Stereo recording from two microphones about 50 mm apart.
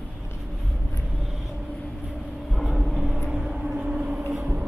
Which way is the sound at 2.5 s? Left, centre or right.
Centre.